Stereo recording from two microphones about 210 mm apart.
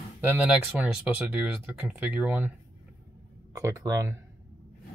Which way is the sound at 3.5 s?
15° right (ahead or behind).